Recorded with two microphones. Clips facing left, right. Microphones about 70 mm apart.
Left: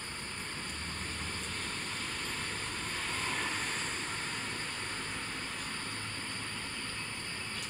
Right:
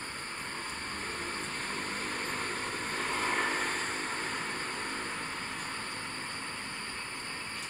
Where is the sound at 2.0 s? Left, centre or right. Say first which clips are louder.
Right 4 dB; right.